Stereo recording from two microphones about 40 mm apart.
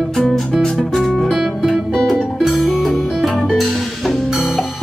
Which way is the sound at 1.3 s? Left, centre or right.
Centre.